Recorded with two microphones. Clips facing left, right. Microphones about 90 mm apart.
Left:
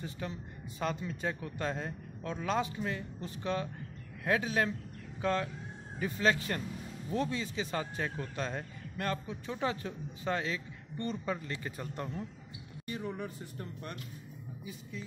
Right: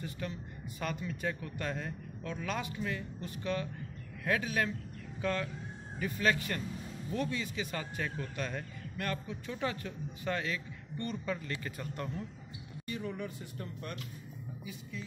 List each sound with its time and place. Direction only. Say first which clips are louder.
0.0 s speech: even; 25° left (ahead or behind)